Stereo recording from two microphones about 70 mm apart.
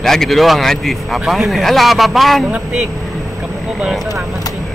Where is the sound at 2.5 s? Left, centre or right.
Centre.